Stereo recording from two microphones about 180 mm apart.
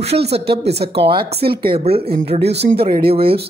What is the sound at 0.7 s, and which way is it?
Speech, 65° right (ahead or behind).